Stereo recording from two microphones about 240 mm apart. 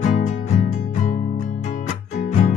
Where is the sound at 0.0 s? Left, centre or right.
Left.